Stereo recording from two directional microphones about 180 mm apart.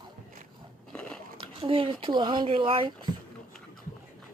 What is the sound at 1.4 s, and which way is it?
Speech, 30° right (ahead or behind).